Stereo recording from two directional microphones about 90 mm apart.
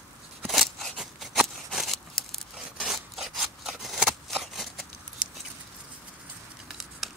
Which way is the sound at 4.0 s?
Centre (ahead or behind).